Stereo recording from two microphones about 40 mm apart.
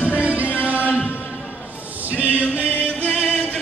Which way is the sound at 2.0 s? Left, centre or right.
Right.